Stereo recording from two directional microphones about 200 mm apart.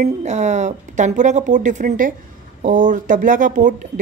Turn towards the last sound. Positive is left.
turn(degrees=-40)  # may be behind; listen again after turning